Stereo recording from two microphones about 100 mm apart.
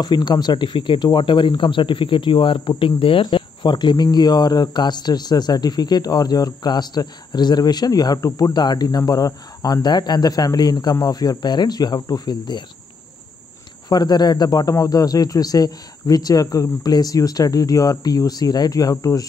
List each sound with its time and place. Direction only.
0.0 s speech: 45° left (ahead or behind)
13.8 s speech: 45° left (ahead or behind)